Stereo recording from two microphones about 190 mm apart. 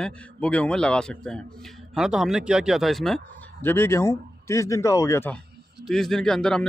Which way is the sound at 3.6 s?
10° left (ahead or behind).